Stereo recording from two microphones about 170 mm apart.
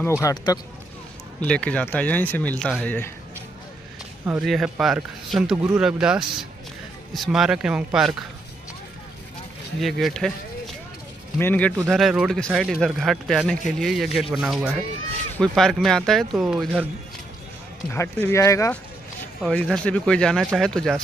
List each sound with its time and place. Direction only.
0.2 s speech: 20° left (ahead or behind)
1.4 s speech: 5° left (ahead or behind)
4.3 s speech: centre (ahead or behind)
9.8 s speech: centre (ahead or behind)
11.3 s speech: 10° left (ahead or behind)
11.9 s speech: centre (ahead or behind)
17.9 s speech: 10° left (ahead or behind)
19.4 s speech: 5° left (ahead or behind)